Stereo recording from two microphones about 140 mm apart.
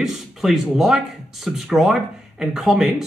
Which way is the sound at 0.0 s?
Centre (ahead or behind).